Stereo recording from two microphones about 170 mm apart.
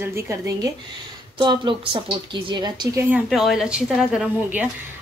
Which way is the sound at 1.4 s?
30° right (ahead or behind).